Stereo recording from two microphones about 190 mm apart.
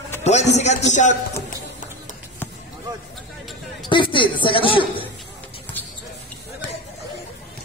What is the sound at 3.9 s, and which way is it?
A woman's voice, 25° left (ahead or behind).